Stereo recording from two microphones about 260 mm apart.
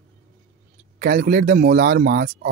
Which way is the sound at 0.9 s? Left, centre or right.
Right.